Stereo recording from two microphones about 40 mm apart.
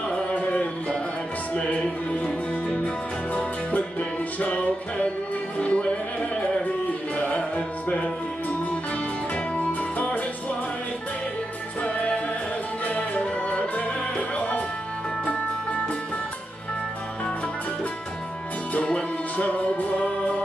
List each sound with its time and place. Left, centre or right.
0.1 s music: left
4.4 s music: left
7.2 s music: left
9.6 s music: left
12.8 s music: left
13.2 s music: left
19.3 s music: left
20.0 s music: left